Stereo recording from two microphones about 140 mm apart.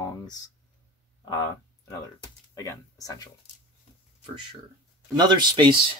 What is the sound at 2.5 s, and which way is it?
Speech, 25° left (ahead or behind).